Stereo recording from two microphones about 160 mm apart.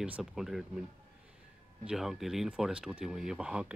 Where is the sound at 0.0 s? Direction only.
5° right (ahead or behind).